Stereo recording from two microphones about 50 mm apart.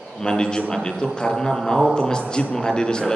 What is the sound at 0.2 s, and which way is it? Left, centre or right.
A man's voice, centre.